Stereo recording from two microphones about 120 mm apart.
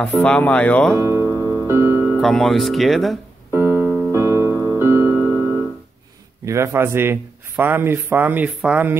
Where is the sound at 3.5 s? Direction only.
20° right (ahead or behind).